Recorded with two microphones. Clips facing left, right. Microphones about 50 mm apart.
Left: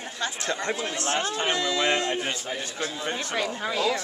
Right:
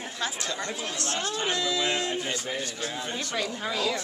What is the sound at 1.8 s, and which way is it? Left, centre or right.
Speech, left.